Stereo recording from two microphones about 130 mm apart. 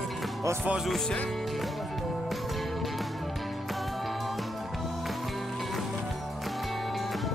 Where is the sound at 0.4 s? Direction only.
20° right (ahead or behind).